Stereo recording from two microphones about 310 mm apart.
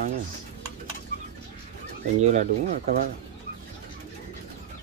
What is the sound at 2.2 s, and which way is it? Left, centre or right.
Speech, right.